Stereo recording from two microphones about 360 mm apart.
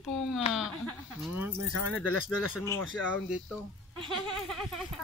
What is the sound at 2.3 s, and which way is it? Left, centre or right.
A woman's voice, centre.